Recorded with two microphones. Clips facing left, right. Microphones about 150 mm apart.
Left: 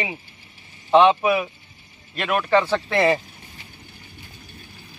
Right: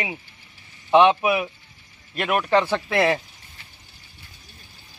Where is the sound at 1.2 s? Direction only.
10° right (ahead or behind).